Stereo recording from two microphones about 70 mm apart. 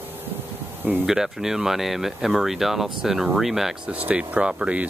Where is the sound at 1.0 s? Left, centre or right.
Centre.